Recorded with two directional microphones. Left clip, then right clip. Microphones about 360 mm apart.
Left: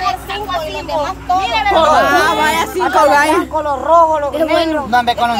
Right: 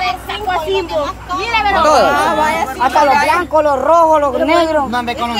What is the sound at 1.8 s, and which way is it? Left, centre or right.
Speech, right.